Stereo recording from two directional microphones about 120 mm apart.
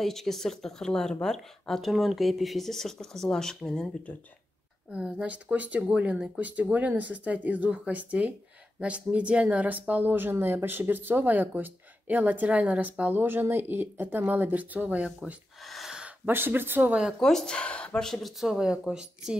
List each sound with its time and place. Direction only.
0.0 s speech: centre (ahead or behind)
4.9 s speech: 10° right (ahead or behind)
15.6 s gasp: centre (ahead or behind)
16.3 s speech: 15° right (ahead or behind)
17.2 s speech: 5° left (ahead or behind)